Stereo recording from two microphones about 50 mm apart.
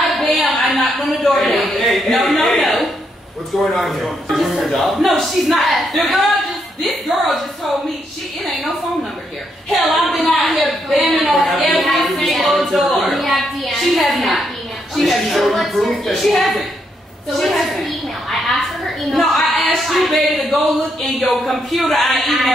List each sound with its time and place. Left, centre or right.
0.0 s a sound: centre
3.5 s speech: centre
9.7 s a woman's voice: centre